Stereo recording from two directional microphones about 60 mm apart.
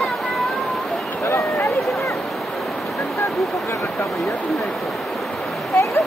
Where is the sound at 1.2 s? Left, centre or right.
Left.